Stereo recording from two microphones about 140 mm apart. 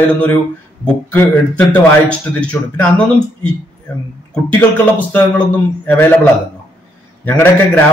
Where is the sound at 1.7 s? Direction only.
10° left (ahead or behind).